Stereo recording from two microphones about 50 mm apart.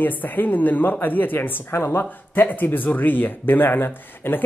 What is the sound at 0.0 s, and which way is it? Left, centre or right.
A man's voice, left.